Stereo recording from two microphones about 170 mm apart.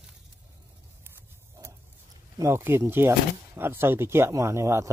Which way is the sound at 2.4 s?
15° right (ahead or behind).